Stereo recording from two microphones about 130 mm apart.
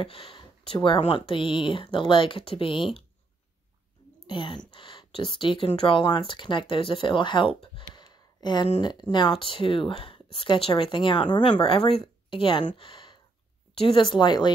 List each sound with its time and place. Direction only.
0.0 s speech: 45° left (ahead or behind)
4.3 s speech: 40° left (ahead or behind)
7.9 s a sound: 35° left (ahead or behind)
8.8 s a woman's voice: 35° left (ahead or behind)
12.7 s a sound: 40° left (ahead or behind)
13.7 s speech: 40° left (ahead or behind)